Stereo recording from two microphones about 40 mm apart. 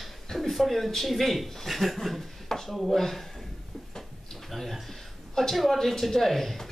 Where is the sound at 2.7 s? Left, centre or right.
Centre.